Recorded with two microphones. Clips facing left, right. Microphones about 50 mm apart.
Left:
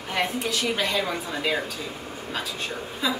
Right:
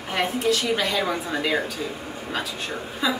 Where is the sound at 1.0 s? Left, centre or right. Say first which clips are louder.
Right 3 dB; centre.